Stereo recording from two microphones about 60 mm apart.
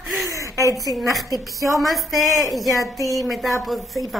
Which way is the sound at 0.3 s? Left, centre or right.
Right.